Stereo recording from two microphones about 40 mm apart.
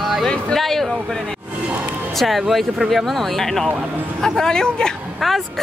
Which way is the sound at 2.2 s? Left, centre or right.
Centre.